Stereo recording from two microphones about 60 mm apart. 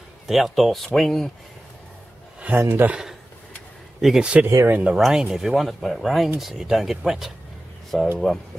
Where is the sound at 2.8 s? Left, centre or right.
Right.